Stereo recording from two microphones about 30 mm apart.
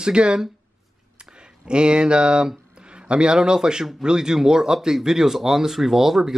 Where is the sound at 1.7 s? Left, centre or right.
Right.